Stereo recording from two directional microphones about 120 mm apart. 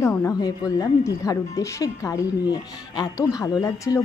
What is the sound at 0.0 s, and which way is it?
A woman's voice, 25° left (ahead or behind).